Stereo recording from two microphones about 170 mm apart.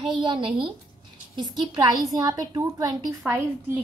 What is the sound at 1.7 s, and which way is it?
A woman's voice, 20° right (ahead or behind).